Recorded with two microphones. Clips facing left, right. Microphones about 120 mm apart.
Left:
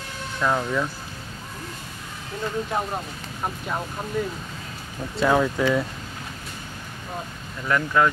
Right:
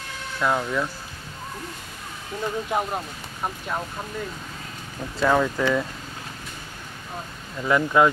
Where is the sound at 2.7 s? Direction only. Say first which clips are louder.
Right 1 dB; 10° right (ahead or behind).